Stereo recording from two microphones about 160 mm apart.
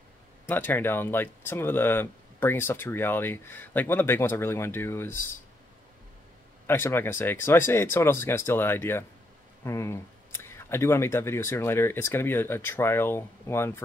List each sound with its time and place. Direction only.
0.5 s speech: 10° left (ahead or behind)
6.7 s speech: 15° left (ahead or behind)